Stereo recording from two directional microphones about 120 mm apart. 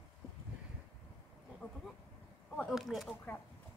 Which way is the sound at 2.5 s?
Centre (ahead or behind).